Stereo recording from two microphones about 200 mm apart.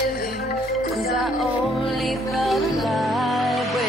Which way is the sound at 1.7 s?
Centre (ahead or behind).